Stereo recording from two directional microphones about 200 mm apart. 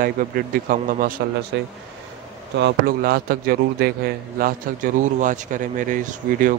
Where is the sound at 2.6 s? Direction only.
50° right (ahead or behind).